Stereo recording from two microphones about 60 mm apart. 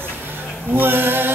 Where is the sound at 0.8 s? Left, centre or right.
Right.